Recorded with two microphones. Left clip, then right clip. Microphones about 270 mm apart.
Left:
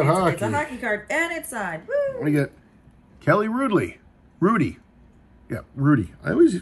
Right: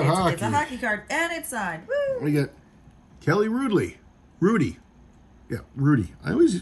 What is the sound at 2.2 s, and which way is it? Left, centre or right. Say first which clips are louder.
A man's voice: left 2 dB; centre.